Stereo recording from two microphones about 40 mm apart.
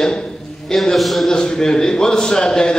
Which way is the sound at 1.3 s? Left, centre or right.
Centre.